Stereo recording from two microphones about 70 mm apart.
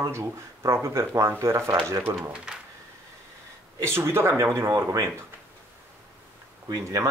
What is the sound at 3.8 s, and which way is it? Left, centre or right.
Speech, right.